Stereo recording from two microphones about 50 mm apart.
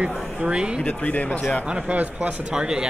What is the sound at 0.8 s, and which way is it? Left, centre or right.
Speech, left.